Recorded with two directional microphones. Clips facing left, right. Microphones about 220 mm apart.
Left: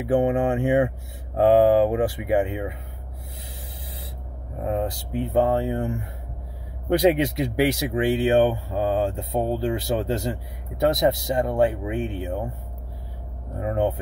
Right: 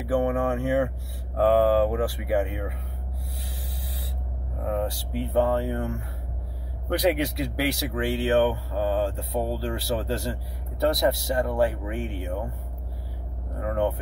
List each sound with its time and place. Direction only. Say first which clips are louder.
0.0 s speech: left 3 dB; 20° left (ahead or behind)
4.6 s speech: left 2 dB; 20° left (ahead or behind)
13.6 s speech: left 2 dB; 20° left (ahead or behind)